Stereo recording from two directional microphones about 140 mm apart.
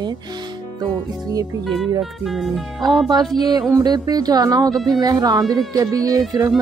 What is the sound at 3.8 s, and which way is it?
Speech, 30° right (ahead or behind).